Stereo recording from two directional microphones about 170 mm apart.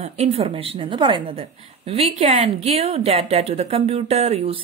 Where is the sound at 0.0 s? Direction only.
35° right (ahead or behind).